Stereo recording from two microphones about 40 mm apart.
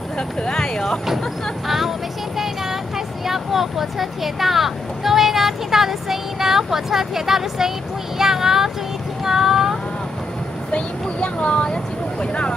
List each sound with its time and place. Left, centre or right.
0.4 s speech: centre
3.3 s speech: centre
9.2 s child singing: centre
10.7 s speech: left